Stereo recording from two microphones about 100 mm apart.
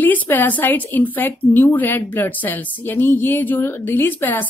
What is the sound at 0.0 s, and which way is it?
Speech, 15° left (ahead or behind).